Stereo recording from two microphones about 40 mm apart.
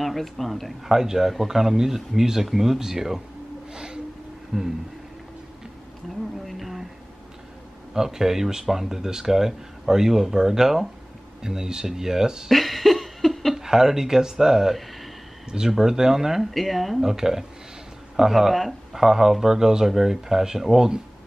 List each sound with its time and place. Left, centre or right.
0.0 s speech: centre
0.9 s speech: centre
3.7 s a sound: centre
4.5 s speech: centre
6.4 s a sound: centre
7.9 s speech: centre
12.4 s a sound: centre
13.6 s speech: centre
16.5 s speech: centre
17.1 s speech: centre